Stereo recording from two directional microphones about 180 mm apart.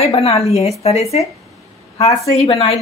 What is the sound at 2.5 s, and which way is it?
Speech, 35° left (ahead or behind).